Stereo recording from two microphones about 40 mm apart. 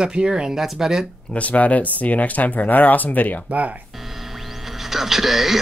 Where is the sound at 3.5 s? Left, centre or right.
Right.